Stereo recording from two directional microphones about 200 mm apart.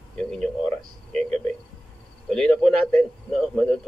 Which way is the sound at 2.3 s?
5° left (ahead or behind).